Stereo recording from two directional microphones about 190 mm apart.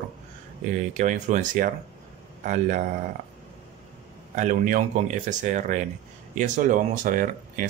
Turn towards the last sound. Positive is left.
turn(degrees=-45)  # may be behind; listen again after turning